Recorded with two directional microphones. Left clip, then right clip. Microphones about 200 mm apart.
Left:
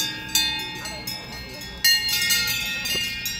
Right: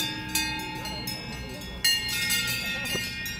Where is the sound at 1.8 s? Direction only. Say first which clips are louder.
Left 6 dB; 35° left (ahead or behind).